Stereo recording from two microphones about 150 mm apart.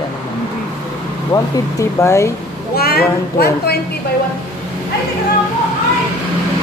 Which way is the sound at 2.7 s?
90° left.